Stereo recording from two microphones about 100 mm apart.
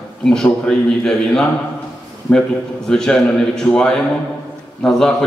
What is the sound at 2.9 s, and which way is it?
A man's voice, 5° left (ahead or behind).